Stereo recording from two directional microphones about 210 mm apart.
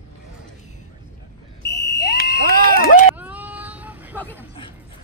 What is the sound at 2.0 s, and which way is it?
Fire alarm, 50° left (ahead or behind).